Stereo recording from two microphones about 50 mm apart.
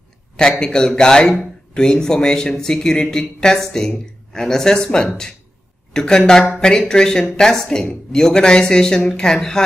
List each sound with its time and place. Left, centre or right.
0.4 s speech: centre